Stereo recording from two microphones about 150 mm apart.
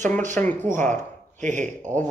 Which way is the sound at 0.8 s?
55° right (ahead or behind).